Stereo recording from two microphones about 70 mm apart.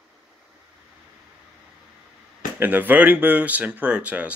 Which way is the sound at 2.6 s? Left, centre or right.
Right.